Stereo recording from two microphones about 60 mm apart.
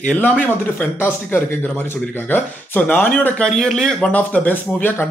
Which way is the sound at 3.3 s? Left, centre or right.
Centre.